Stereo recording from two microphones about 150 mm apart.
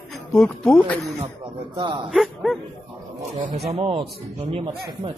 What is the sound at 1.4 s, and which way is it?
Speech, 30° right (ahead or behind).